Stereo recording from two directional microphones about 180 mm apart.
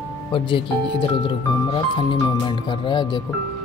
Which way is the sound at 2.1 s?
25° left (ahead or behind).